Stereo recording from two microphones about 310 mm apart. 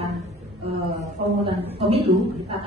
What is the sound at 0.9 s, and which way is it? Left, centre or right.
Speech, centre.